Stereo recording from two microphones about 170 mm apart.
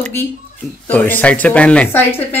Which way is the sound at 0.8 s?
10° left (ahead or behind).